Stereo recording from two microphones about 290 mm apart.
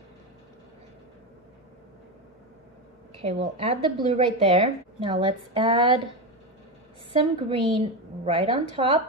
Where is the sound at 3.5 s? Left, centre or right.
Centre.